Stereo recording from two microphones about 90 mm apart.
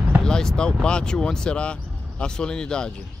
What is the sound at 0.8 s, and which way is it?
Speech, 10° left (ahead or behind).